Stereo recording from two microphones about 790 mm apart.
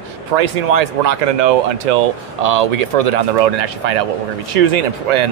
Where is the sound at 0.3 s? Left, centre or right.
Right.